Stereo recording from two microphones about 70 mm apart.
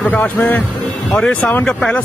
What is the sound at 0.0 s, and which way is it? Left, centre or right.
A man's voice, left.